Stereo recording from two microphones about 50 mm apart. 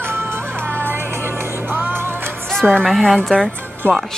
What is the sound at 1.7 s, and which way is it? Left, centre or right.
Music, right.